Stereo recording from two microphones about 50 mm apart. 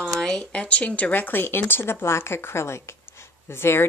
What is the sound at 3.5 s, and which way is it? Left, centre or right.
Speech, left.